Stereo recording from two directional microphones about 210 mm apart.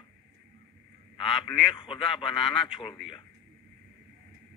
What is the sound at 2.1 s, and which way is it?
A man's voice, centre (ahead or behind).